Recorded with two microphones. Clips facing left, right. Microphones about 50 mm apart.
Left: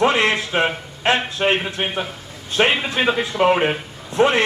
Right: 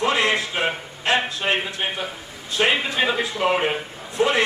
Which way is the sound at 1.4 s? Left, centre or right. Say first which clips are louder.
Left 9 dB; left.